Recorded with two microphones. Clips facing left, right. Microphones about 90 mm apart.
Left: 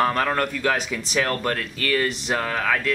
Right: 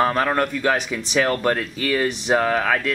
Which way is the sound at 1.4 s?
20° right (ahead or behind).